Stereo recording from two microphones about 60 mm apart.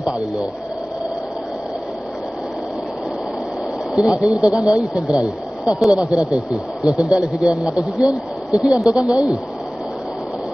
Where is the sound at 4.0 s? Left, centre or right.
Centre.